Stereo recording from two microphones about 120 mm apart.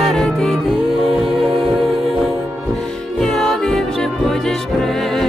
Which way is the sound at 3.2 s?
5° left (ahead or behind).